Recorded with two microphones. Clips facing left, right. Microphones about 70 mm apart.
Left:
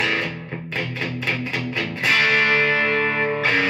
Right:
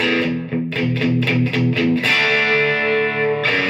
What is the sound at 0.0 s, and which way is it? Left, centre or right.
Music, centre.